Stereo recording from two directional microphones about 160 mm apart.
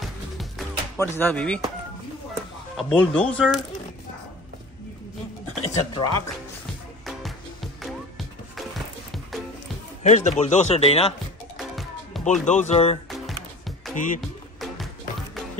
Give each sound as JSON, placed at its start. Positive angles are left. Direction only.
{"t": 0.9, "sound": "speech", "side_deg": 15}
{"t": 2.7, "sound": "speech", "side_deg": 0}
{"t": 5.6, "sound": "speech", "side_deg": 30}
{"t": 7.1, "sound": "music", "side_deg": 0}
{"t": 10.0, "sound": "speech", "side_deg": 45}
{"t": 11.5, "sound": "music", "side_deg": 0}
{"t": 12.3, "sound": "speech", "side_deg": 50}
{"t": 13.1, "sound": "music", "side_deg": 0}
{"t": 13.9, "sound": "speech", "side_deg": 55}